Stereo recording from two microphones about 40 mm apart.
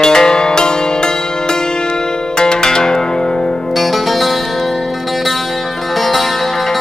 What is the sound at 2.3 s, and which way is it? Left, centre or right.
Music, centre.